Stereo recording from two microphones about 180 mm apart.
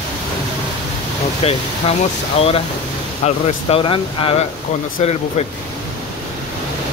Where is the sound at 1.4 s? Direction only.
35° left (ahead or behind).